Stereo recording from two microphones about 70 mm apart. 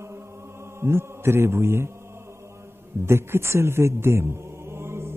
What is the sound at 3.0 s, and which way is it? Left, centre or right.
A man's voice, right.